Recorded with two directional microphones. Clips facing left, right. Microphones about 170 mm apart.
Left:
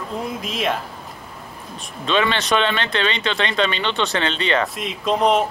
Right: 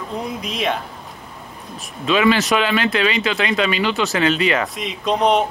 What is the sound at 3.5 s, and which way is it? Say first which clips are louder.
Speech: right 2 dB; 30° left (ahead or behind).